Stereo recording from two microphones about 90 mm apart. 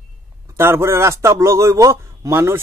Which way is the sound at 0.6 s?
25° right (ahead or behind).